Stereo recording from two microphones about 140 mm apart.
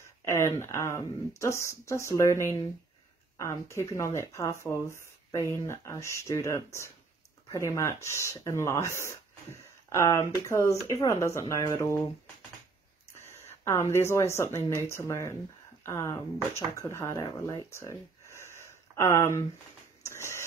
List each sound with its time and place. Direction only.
0.2 s speech: 20° left (ahead or behind)
13.1 s speech: 20° left (ahead or behind)
20.0 s printer: 20° left (ahead or behind)